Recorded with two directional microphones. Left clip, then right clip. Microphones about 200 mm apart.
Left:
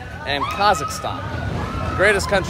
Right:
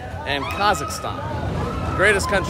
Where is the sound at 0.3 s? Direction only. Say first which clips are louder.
Left 2 dB; 10° right (ahead or behind).